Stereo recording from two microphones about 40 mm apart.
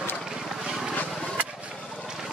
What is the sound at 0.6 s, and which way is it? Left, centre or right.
Vehicle, centre.